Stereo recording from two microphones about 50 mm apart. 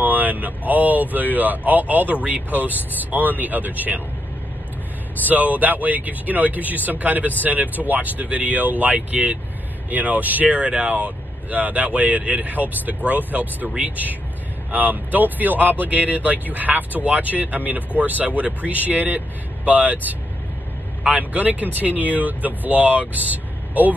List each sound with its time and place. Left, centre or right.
0.0 s speech: right
5.2 s speech: right